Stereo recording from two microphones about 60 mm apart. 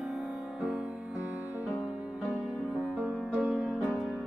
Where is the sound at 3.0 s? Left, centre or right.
Centre.